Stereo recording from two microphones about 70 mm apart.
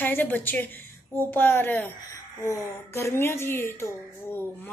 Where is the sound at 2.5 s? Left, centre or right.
Left.